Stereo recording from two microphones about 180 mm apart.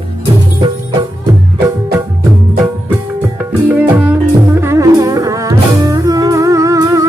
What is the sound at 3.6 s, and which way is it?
Music, 10° right (ahead or behind).